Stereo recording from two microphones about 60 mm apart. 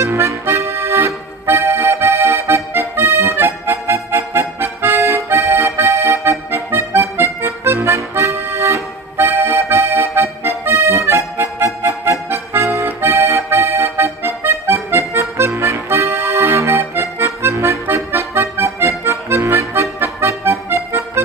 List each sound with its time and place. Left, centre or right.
0.0 s accordion: right
14.0 s accordion: right